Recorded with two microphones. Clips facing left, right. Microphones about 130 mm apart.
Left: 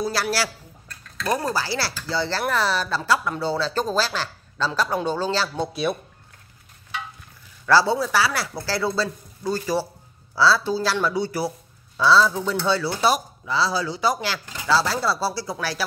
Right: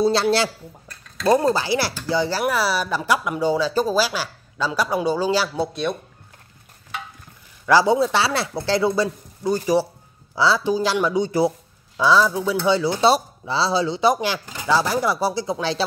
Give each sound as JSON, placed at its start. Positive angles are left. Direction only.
{"t": 0.0, "sound": "speech", "side_deg": -25}
{"t": 5.7, "sound": "speech", "side_deg": 5}
{"t": 7.6, "sound": "speech", "side_deg": -15}